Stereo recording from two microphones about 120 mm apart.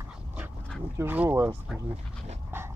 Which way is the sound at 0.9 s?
15° right (ahead or behind).